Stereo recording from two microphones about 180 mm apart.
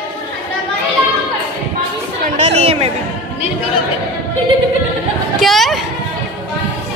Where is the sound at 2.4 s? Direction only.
35° right (ahead or behind).